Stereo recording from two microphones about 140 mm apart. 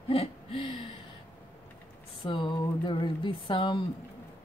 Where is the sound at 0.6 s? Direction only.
40° left (ahead or behind).